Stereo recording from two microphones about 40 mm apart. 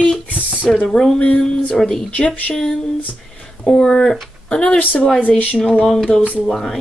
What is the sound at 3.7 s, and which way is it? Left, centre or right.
Speech, left.